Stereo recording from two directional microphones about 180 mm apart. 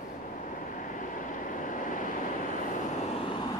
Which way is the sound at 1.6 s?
45° left (ahead or behind).